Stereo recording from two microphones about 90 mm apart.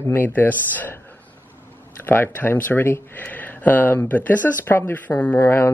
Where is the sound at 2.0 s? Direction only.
25° left (ahead or behind).